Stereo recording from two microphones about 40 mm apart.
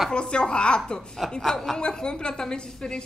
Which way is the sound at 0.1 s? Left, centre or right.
Left.